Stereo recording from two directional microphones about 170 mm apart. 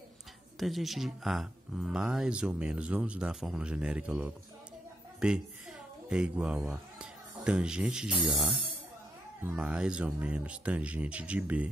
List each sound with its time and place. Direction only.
0.6 s a woman's voice: centre (ahead or behind)